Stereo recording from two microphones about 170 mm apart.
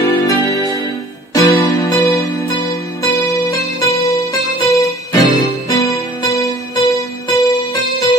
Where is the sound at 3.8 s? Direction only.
20° left (ahead or behind).